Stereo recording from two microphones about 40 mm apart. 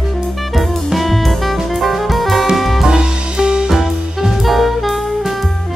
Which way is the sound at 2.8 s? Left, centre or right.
Centre.